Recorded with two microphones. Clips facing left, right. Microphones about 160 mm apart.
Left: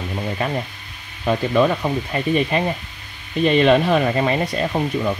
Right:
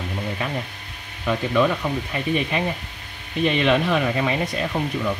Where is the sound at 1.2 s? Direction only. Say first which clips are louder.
Left 3 dB; 30° left (ahead or behind).